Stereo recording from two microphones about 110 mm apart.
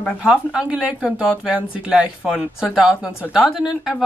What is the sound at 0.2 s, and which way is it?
Speech, 5° right (ahead or behind).